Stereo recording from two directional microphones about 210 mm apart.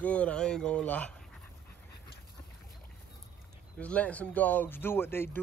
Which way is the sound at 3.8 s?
5° left (ahead or behind).